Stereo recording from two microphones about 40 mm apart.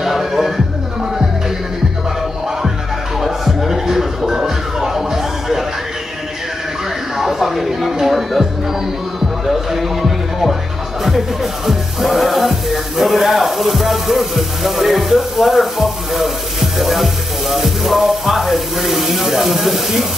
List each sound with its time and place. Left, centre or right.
0.0 s music: centre
3.2 s music: centre
7.2 s music: centre
9.5 s music: centre
11.1 s speech: centre